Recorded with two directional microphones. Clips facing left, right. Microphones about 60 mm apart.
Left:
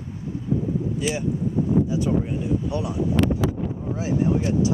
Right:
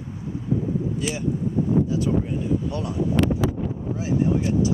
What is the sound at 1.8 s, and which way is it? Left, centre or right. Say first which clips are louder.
Speech: even; centre.